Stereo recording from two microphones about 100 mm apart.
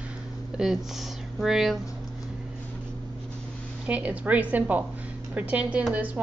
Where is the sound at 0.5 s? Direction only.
10° right (ahead or behind).